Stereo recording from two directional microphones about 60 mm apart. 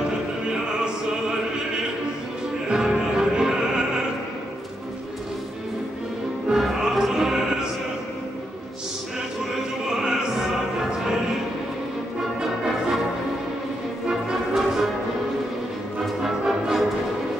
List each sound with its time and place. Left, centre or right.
2.7 s music: centre
6.6 s music: centre
9.8 s music: centre
14.0 s music: centre
16.2 s music: centre